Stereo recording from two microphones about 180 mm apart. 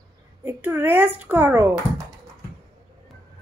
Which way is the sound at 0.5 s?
10° right (ahead or behind).